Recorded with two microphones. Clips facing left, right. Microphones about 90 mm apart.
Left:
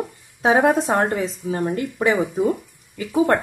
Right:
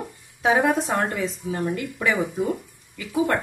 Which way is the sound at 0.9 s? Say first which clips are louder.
Left 4 dB; 20° left (ahead or behind).